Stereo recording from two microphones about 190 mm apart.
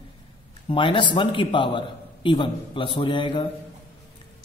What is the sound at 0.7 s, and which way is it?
A man's voice, 25° left (ahead or behind).